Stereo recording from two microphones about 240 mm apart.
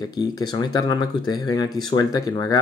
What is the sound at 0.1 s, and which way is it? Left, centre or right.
Speech, centre.